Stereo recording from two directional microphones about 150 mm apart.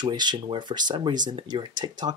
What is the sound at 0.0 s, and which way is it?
Speech, 30° right (ahead or behind).